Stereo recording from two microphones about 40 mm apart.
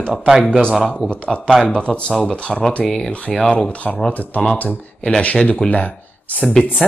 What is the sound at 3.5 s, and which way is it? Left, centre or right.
Speech, left.